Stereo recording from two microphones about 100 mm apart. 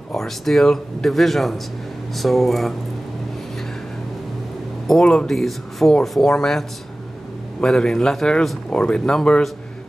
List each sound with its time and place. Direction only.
0.1 s speech: 5° left (ahead or behind)
4.8 s speech: 5° left (ahead or behind)
7.6 s speech: 5° left (ahead or behind)